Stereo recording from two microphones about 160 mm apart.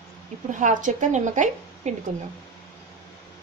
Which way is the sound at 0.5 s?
50° right (ahead or behind).